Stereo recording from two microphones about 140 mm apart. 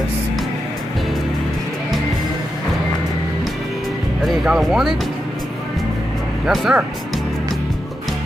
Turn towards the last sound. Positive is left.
turn(degrees=-5)  # may be behind; listen again after turning